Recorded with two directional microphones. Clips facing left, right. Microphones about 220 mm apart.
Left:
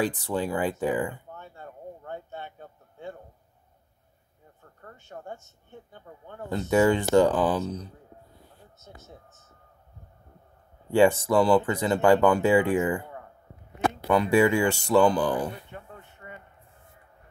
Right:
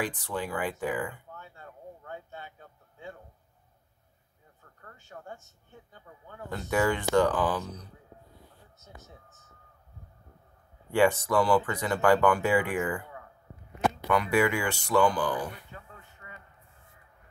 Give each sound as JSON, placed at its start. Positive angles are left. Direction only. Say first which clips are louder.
{"t": 0.0, "sound": "speech", "louder": "left 6 dB", "side_deg": 25}
{"t": 4.8, "sound": "speech", "louder": "left 4 dB", "side_deg": 20}
{"t": 6.7, "sound": "speech", "louder": "left 5 dB", "side_deg": 25}
{"t": 10.9, "sound": "speech", "louder": "left 4 dB", "side_deg": 25}